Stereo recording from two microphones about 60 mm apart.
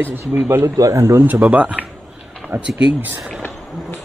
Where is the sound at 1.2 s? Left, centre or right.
Right.